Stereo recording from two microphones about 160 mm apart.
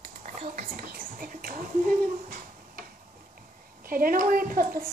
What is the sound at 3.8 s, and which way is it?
A woman's voice, 65° right (ahead or behind).